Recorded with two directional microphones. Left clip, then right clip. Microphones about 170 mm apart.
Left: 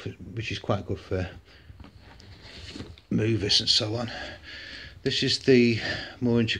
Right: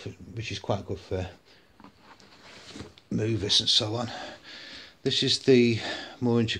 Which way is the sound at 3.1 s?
20° left (ahead or behind).